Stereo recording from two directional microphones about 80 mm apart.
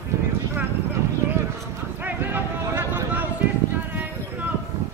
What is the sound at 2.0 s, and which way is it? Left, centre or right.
Clip-clop, right.